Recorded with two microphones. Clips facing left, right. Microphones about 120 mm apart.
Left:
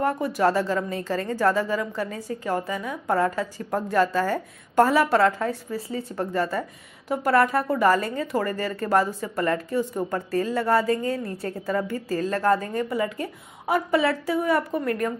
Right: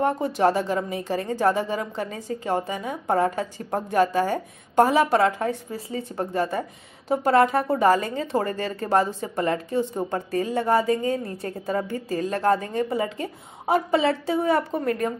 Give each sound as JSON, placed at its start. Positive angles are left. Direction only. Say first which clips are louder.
{"t": 0.0, "sound": "speech", "louder": "right 1 dB", "side_deg": -25}